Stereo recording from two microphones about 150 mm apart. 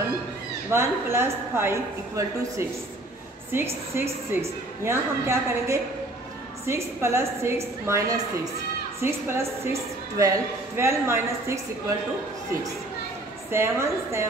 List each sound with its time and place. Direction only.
0.7 s a woman's voice: 15° right (ahead or behind)
13.5 s a woman's voice: 15° right (ahead or behind)